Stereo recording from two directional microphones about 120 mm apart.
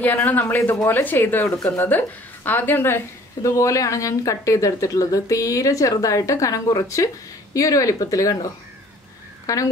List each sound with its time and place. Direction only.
0.0 s a woman's voice: 15° left (ahead or behind)
9.5 s speech: 30° left (ahead or behind)